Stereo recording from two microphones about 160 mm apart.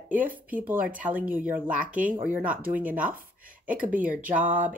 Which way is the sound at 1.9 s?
55° right (ahead or behind).